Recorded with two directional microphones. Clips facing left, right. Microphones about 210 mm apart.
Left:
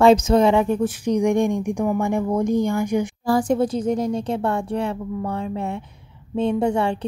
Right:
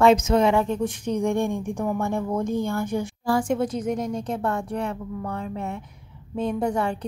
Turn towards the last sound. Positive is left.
turn(degrees=25)  # may be behind; listen again after turning